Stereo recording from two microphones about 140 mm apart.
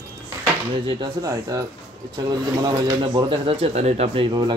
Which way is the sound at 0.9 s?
30° right (ahead or behind).